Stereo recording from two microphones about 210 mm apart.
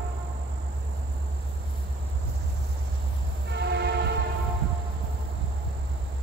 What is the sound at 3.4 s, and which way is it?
Music, 55° right (ahead or behind).